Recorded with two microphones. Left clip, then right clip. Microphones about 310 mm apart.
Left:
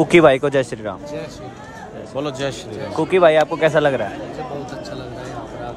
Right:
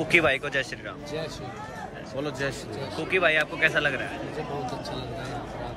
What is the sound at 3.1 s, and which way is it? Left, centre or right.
Speech, centre.